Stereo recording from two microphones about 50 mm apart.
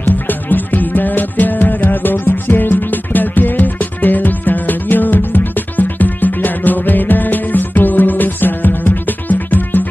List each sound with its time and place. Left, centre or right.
0.0 s music: left